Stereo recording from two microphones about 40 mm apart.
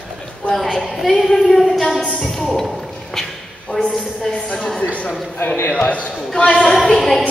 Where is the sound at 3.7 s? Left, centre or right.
Centre.